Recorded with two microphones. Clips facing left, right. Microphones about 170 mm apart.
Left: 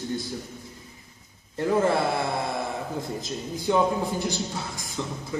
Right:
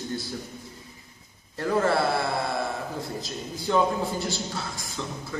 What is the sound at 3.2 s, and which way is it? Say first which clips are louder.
A man's voice: left 3 dB; 15° left (ahead or behind).